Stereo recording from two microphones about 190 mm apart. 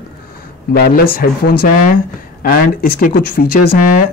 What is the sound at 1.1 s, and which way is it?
Speech, 50° left (ahead or behind).